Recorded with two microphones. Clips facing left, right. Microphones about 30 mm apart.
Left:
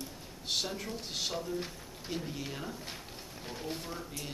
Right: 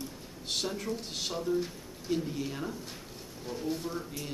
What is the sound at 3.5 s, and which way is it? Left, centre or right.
Speech, centre.